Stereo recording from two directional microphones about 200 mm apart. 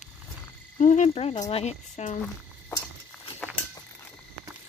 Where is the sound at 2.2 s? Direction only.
10° left (ahead or behind).